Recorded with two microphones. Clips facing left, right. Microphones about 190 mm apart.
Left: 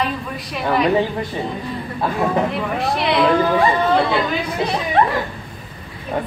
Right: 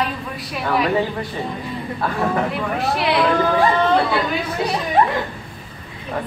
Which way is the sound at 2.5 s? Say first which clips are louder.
Left 1 dB; centre (ahead or behind).